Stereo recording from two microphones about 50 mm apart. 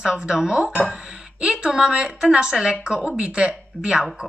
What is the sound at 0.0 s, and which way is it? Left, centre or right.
Speech, centre.